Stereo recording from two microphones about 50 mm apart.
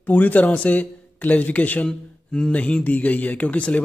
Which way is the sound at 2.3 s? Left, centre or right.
Centre.